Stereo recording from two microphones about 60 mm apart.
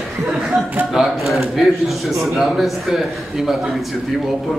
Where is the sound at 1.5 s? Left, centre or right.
Centre.